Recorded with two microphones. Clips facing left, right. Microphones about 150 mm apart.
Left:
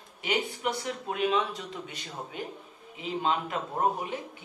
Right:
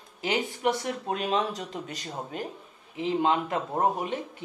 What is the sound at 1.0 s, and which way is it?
Speech, 40° right (ahead or behind).